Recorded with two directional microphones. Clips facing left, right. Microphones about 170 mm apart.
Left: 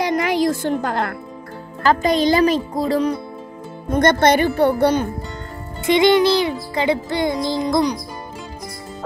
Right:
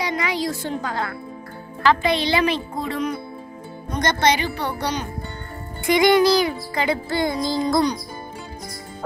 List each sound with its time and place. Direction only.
0.0 s music: 50° left (ahead or behind)
1.8 s speech: 40° left (ahead or behind)
3.9 s speech: 55° left (ahead or behind)
5.9 s music: 25° left (ahead or behind)